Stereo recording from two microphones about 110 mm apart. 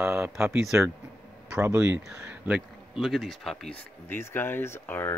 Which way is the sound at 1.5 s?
25° right (ahead or behind).